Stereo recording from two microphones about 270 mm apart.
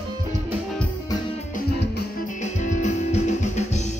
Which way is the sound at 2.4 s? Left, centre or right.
Left.